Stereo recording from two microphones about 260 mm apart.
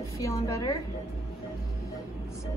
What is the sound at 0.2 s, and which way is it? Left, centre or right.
Speech, centre.